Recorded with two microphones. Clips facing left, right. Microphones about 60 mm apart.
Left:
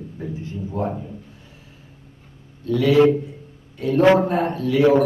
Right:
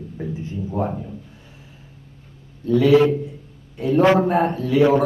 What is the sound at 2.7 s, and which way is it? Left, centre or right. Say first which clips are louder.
Speech: right 4 dB; right.